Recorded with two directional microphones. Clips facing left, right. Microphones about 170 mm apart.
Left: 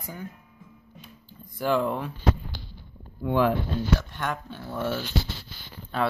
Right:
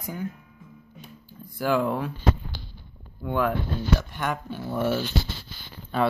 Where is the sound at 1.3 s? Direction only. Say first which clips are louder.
Right 1 dB; 5° right (ahead or behind).